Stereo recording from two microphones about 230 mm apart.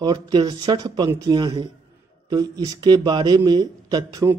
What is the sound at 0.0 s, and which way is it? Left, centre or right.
A man's voice, centre.